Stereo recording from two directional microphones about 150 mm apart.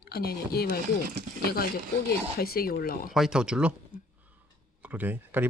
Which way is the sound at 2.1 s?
85° left.